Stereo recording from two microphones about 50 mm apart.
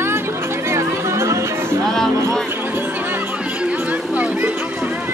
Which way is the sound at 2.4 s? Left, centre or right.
Right.